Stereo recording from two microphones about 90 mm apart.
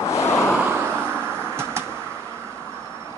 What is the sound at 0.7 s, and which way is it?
Vehicle, 25° right (ahead or behind).